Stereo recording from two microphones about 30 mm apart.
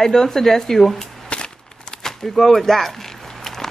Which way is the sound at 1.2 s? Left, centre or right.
Left.